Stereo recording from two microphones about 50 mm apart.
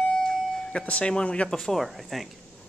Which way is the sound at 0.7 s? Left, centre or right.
Left.